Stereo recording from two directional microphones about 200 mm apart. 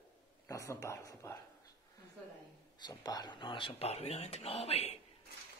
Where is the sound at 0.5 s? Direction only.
15° left (ahead or behind).